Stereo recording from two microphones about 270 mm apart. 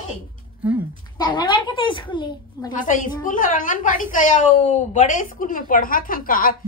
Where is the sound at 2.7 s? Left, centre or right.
Left.